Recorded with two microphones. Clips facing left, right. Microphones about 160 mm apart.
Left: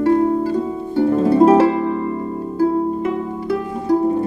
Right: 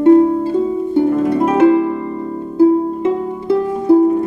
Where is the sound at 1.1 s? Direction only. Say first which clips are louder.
Left 3 dB; 30° left (ahead or behind).